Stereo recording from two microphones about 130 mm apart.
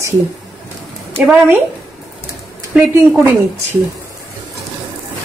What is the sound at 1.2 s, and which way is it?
Speech, 10° right (ahead or behind).